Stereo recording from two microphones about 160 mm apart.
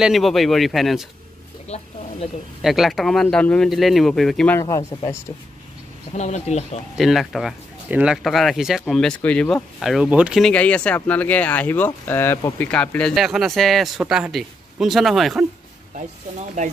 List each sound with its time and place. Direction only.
0.0 s speech: centre (ahead or behind)
1.7 s speech: 40° left (ahead or behind)
2.6 s speech: centre (ahead or behind)
4.6 s speech: 20° left (ahead or behind)
6.1 s speech: 45° left (ahead or behind)
7.0 s speech: centre (ahead or behind)
10.4 s speech: 10° left (ahead or behind)
16.6 s speech: 50° right (ahead or behind)